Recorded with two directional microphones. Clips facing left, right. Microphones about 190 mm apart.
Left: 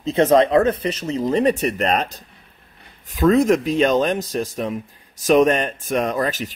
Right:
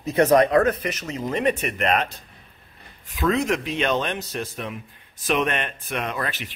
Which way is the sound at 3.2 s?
40° left (ahead or behind).